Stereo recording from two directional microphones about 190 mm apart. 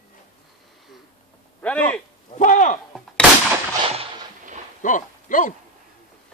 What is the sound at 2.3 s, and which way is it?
Speech, 40° left (ahead or behind).